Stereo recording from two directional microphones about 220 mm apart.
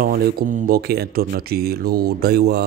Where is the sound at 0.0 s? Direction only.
40° right (ahead or behind).